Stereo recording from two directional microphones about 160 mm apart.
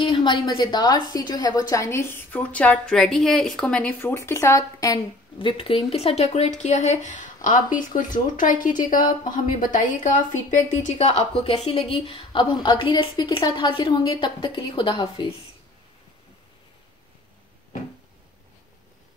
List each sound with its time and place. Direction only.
0.1 s a woman's voice: 30° left (ahead or behind)